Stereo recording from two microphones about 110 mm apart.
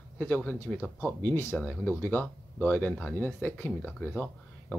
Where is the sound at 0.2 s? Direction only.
15° left (ahead or behind).